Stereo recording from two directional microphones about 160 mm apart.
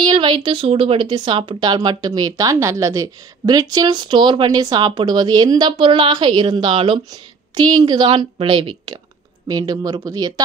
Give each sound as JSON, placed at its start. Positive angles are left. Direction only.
{"t": 0.0, "sound": "speech", "side_deg": -30}